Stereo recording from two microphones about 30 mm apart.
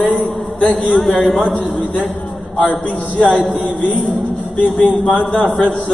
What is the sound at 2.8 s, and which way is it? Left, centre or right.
Speech, left.